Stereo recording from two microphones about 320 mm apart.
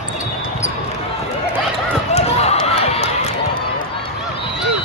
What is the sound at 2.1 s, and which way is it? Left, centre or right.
Run, centre.